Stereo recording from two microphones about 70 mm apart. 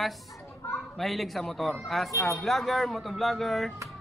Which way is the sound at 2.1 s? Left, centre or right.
Left.